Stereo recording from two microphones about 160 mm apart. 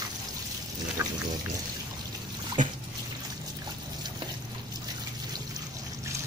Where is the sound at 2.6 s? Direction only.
50° right (ahead or behind).